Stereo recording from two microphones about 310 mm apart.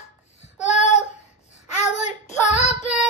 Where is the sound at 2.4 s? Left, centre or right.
Left.